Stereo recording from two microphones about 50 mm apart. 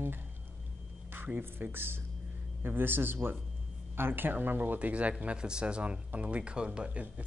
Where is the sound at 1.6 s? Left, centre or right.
Right.